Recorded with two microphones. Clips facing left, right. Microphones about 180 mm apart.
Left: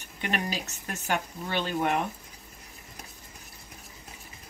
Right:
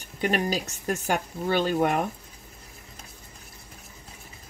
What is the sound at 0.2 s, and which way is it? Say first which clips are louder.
Speech: right 6 dB; 40° right (ahead or behind).